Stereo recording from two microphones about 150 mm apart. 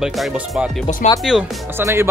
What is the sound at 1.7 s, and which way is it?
Speech, 15° right (ahead or behind).